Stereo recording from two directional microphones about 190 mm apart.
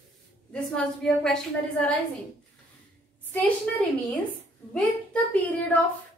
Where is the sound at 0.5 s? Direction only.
5° left (ahead or behind).